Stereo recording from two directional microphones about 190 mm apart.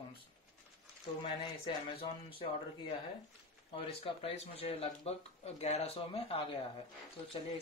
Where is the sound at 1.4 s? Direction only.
25° left (ahead or behind).